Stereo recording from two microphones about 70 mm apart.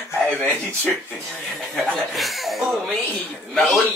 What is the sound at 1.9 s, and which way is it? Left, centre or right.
Speech, centre.